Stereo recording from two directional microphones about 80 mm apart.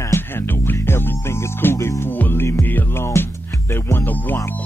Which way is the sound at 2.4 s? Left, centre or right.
Left.